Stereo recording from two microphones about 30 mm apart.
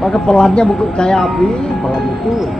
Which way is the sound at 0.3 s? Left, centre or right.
Left.